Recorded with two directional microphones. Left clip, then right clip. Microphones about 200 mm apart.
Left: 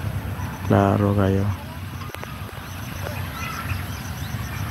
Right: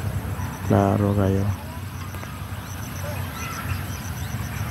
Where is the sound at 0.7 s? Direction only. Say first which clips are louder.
Left 2 dB; centre (ahead or behind).